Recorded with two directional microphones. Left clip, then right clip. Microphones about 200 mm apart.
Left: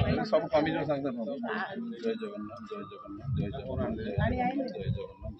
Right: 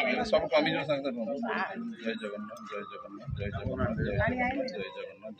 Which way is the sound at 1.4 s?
15° left (ahead or behind).